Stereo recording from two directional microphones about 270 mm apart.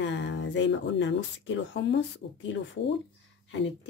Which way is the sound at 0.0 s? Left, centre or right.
Left.